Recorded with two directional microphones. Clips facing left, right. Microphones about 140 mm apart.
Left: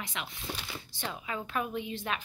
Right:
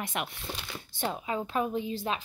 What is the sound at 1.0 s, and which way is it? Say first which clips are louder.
A woman's voice: right 6 dB; 35° right (ahead or behind).